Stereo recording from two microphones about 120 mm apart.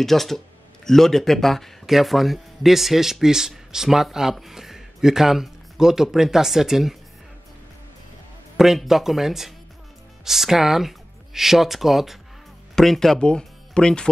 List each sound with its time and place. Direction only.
0.0 s a man's voice: centre (ahead or behind)
8.5 s a man's voice: 5° right (ahead or behind)